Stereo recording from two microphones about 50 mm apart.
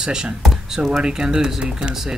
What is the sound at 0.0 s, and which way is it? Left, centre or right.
Mantra, centre.